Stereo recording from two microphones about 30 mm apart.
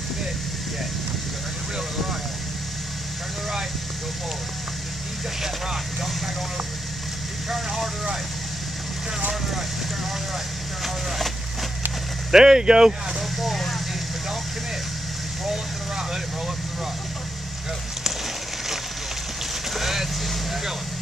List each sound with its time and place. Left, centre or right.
7.4 s speech: centre
12.3 s speech: right
13.4 s vehicle: centre
19.7 s vehicle: centre